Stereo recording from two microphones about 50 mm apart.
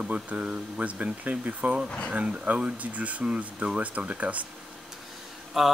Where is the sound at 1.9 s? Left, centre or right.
Left.